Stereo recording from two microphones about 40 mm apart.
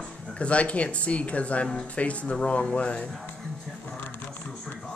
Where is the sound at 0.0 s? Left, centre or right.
Left.